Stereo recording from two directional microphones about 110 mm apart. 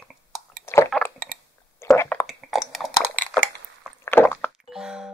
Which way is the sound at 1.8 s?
25° left (ahead or behind).